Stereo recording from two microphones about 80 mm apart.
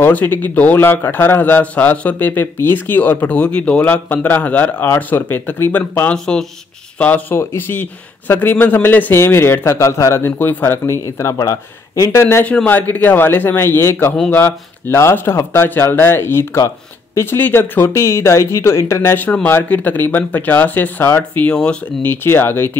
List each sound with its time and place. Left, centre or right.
0.0 s a man's voice: left
6.1 s speech: centre
7.0 s a man's voice: left
12.6 s a man's voice: left
19.1 s a man's voice: left
22.0 s a man's voice: left